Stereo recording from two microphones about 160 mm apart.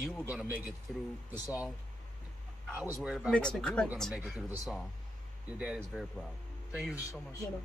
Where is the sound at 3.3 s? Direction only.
5° left (ahead or behind).